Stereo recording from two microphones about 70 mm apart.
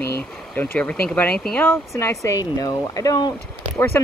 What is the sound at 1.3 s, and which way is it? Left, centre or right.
Speech, centre.